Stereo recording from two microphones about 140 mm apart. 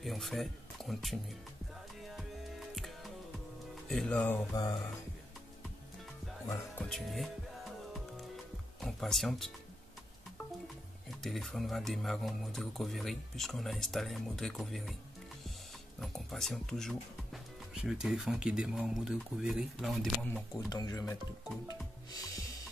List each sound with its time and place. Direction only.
0.0 s speech: centre (ahead or behind)
2.1 s music: centre (ahead or behind)
3.9 s speech: 5° left (ahead or behind)
4.6 s speech: 25° left (ahead or behind)
6.7 s speech: 5° left (ahead or behind)
8.8 s speech: centre (ahead or behind)
11.1 s speech: centre (ahead or behind)
16.0 s speech: centre (ahead or behind)
20.7 s speech: 30° left (ahead or behind)
22.1 s music: 25° left (ahead or behind)